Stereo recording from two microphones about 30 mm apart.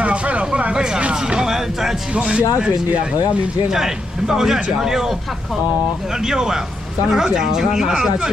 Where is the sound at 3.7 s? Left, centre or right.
Centre.